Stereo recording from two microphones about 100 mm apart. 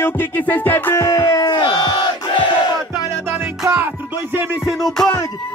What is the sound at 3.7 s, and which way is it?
Music, 20° right (ahead or behind).